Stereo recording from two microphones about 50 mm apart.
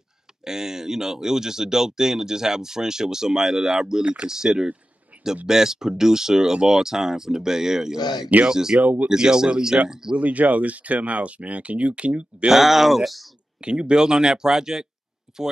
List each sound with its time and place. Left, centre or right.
0.5 s speech: centre
5.1 s a sound: right
5.5 s speech: centre
8.8 s speech: right
9.1 s speech: centre
10.2 s speech: right
12.4 s speech: centre
13.6 s speech: centre
15.3 s a sound: centre